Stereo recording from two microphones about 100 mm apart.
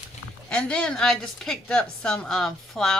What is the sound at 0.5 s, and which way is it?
A woman's voice, 10° left (ahead or behind).